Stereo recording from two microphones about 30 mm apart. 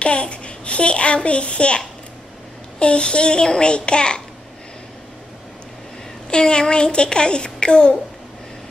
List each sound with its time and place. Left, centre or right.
0.0 s a child's voice: left
2.8 s child singing: left
6.3 s a child's voice: left